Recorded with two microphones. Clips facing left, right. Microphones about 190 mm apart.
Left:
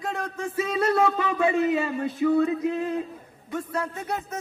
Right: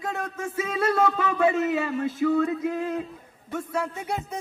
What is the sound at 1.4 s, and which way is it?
A man's voice, 5° right (ahead or behind).